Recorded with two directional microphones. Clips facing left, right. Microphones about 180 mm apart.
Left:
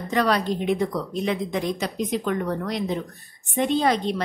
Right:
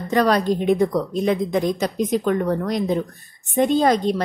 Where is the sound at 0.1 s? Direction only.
40° right (ahead or behind).